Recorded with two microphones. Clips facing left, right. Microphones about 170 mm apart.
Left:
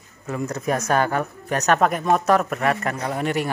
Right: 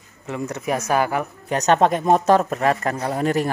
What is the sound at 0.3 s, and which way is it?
Speech, 20° right (ahead or behind).